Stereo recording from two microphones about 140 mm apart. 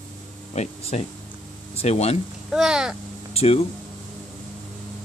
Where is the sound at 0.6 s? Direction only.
50° left (ahead or behind).